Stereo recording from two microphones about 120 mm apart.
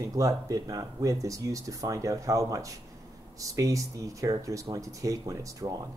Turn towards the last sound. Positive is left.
turn(degrees=-30)  # may be behind; listen again after turning